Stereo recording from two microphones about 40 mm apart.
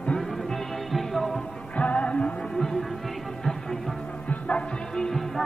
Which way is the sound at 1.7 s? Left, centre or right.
Left.